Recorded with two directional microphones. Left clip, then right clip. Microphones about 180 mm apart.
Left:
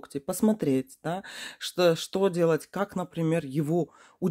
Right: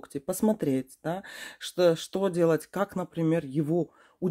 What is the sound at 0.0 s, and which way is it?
Speech, 10° left (ahead or behind).